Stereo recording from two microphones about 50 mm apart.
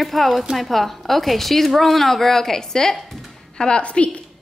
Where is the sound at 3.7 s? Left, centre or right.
Left.